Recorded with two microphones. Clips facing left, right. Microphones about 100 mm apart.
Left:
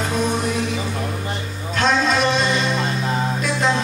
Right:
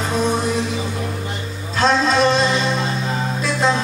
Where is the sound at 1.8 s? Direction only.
30° right (ahead or behind).